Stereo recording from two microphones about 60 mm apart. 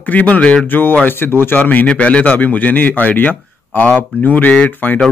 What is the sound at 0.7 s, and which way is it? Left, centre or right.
Speech, left.